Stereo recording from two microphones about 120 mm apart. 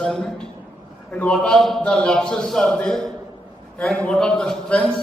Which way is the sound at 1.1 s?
10° left (ahead or behind).